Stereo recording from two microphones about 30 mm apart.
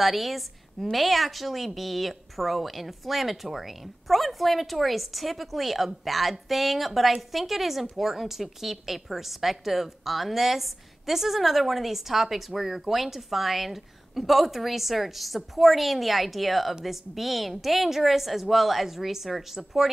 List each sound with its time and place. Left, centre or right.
0.0 s a woman's voice: centre